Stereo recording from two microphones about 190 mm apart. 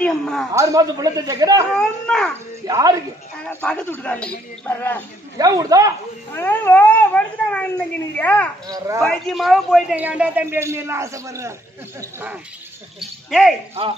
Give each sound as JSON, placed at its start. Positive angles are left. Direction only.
{"t": 0.0, "sound": "speech", "side_deg": 5}
{"t": 0.5, "sound": "a man's voice", "side_deg": -20}
{"t": 1.8, "sound": "speech", "side_deg": 5}
{"t": 2.6, "sound": "speech", "side_deg": -20}
{"t": 3.4, "sound": "speech", "side_deg": 10}
{"t": 5.4, "sound": "speech", "side_deg": -20}
{"t": 6.3, "sound": "speech", "side_deg": 10}
{"t": 8.6, "sound": "speech", "side_deg": -20}
{"t": 9.0, "sound": "a man's voice", "side_deg": 0}
{"t": 13.3, "sound": "speech", "side_deg": 0}